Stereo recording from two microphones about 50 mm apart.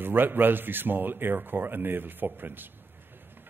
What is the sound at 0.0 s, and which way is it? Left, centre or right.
A man's voice, right.